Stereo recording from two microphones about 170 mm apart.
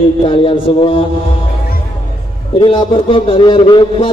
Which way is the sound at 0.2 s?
30° left (ahead or behind).